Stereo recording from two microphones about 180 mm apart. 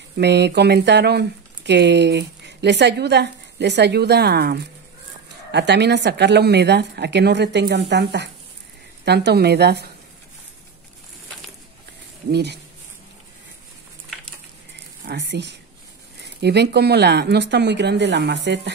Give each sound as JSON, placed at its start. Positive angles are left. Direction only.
{"t": 0.2, "sound": "a woman's voice", "side_deg": -70}
{"t": 12.3, "sound": "a woman's voice", "side_deg": -65}
{"t": 15.0, "sound": "speech", "side_deg": -70}